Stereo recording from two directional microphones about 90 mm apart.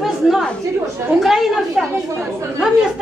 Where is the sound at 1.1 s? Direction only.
5° right (ahead or behind).